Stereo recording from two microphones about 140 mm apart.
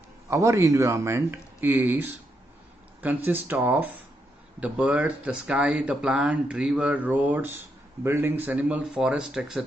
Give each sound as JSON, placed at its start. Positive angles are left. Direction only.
{"t": 0.3, "sound": "speech", "side_deg": -20}